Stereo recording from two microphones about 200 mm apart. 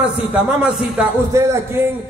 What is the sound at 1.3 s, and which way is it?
Speech, 15° right (ahead or behind).